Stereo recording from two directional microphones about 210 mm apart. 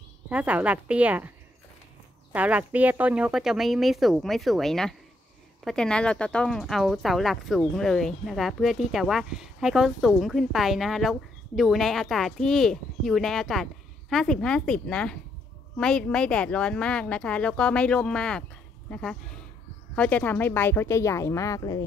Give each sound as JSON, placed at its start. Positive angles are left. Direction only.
{"t": 0.3, "sound": "speech", "side_deg": -5}
{"t": 2.3, "sound": "speech", "side_deg": -5}